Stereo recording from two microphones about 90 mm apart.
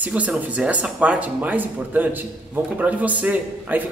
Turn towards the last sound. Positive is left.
turn(degrees=-15)  # may be behind; listen again after turning